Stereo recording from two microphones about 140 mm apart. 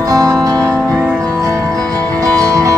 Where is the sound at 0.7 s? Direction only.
5° left (ahead or behind).